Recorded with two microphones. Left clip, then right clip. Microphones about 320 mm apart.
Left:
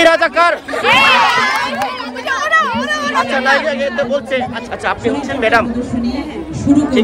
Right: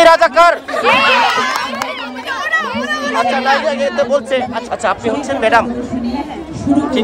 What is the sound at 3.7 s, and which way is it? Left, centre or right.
Speech, centre.